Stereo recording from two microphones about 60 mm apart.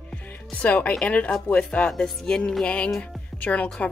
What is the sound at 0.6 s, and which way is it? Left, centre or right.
Speech, left.